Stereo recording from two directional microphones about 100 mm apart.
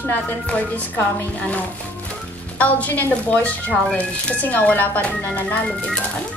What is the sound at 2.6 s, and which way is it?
A woman's voice, 15° left (ahead or behind).